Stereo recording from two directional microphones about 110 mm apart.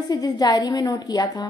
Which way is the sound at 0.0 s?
35° left (ahead or behind).